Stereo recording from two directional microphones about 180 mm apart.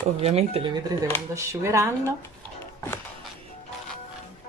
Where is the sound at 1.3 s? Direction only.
15° right (ahead or behind).